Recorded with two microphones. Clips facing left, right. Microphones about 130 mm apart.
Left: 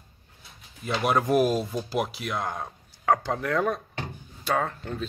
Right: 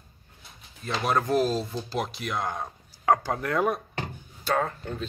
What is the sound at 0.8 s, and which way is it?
Speech, 10° left (ahead or behind).